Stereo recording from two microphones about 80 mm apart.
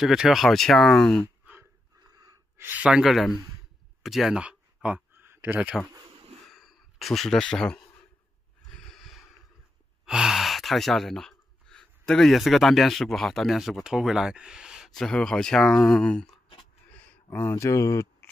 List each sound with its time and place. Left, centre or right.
0.0 s speech: centre
2.5 s gasp: right
2.8 s speech: centre
4.4 s a sound: centre
5.1 s a sound: right
6.4 s sigh: centre
8.6 s snort: centre
10.0 s speech: centre
15.0 s speech: centre
16.9 s a sound: left
17.6 s speech: left